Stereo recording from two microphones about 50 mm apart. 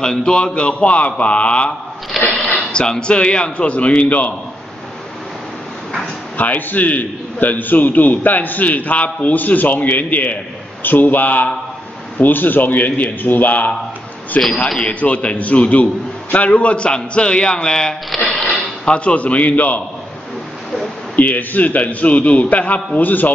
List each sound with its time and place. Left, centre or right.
0.0 s a man's voice: centre
6.3 s a man's voice: left; by 17.9 s centre
18.1 s speech: centre
18.9 s a man's voice: left
21.2 s a man's voice: left